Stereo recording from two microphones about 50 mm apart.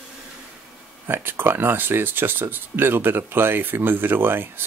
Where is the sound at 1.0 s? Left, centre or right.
Right.